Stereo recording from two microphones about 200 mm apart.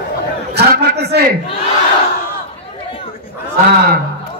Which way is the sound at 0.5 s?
55° right (ahead or behind).